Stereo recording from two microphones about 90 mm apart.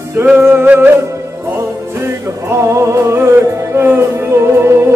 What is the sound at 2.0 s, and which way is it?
Music, 30° right (ahead or behind).